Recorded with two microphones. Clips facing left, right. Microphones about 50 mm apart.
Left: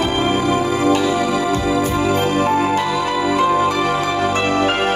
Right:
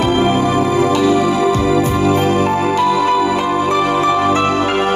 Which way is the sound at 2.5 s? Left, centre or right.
Left.